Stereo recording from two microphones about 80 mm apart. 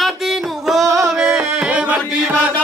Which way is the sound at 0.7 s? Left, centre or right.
Centre.